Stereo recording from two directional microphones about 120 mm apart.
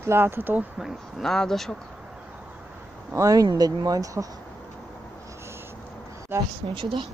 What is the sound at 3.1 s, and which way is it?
Speech, 30° right (ahead or behind).